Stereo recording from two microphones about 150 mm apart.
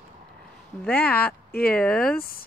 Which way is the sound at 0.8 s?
10° left (ahead or behind).